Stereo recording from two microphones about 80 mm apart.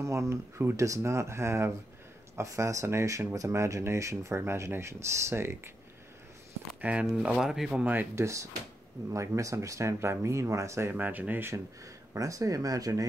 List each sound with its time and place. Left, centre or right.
0.0 s speech: right
6.8 s speech: centre
7.1 s speech: centre
7.8 s speech: right
8.2 s speech: right
11.0 s speech: right
12.1 s speech: right